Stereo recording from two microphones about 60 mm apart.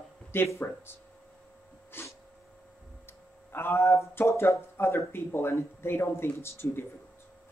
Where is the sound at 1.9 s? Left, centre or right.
Left.